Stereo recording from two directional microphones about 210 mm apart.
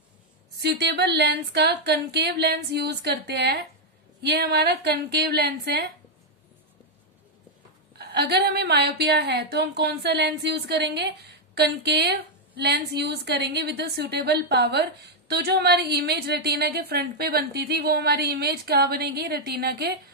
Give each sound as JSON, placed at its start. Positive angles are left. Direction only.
{"t": 0.6, "sound": "a woman's voice", "side_deg": -50}
{"t": 8.0, "sound": "a woman's voice", "side_deg": -50}